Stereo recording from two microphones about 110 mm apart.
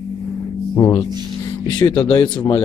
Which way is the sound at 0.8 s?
30° left (ahead or behind).